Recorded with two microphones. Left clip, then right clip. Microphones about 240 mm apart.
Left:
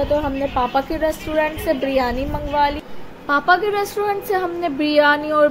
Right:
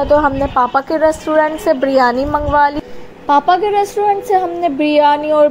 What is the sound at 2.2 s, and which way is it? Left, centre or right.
Speech, right.